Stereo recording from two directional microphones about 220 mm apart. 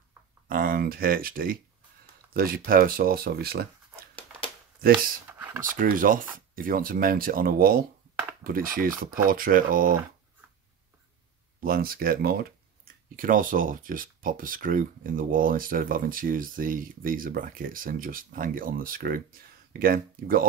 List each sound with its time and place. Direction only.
0.5 s speech: 40° right (ahead or behind)
4.1 s crumpling: 25° left (ahead or behind)
5.6 s speech: 40° right (ahead or behind)
11.6 s speech: 40° right (ahead or behind)